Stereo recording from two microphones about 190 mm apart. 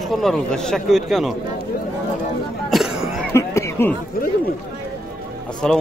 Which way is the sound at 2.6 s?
Centre (ahead or behind).